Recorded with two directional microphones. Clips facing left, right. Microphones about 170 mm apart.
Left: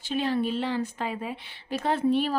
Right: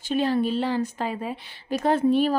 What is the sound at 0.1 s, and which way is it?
A woman's voice, 40° right (ahead or behind).